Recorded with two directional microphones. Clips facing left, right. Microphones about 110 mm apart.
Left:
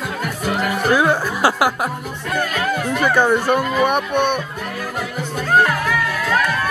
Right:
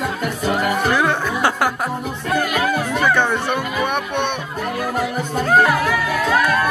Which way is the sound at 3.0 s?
10° left (ahead or behind).